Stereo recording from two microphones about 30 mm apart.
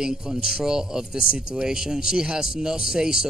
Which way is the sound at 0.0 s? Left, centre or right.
Right.